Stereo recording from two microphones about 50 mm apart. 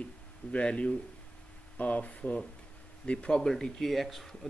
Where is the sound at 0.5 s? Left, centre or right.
Left.